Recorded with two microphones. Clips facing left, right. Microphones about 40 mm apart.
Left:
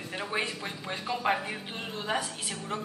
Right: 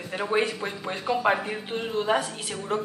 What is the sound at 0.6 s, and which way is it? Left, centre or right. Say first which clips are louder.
A man's voice: right 5 dB; centre.